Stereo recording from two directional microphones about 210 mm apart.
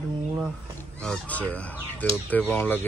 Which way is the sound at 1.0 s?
5° left (ahead or behind).